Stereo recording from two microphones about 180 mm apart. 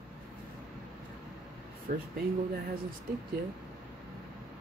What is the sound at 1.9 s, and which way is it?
Speech, 55° right (ahead or behind).